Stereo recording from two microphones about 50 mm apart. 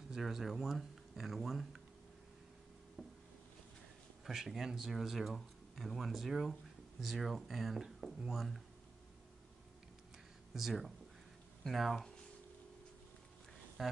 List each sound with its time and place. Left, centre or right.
0.1 s speech: centre
3.0 s a sound: centre
4.3 s speech: centre
10.5 s speech: centre
13.8 s speech: centre